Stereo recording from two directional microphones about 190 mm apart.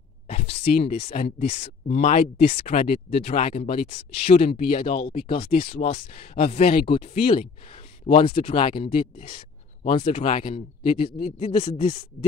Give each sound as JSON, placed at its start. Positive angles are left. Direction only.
{"t": 0.3, "sound": "speech", "side_deg": 35}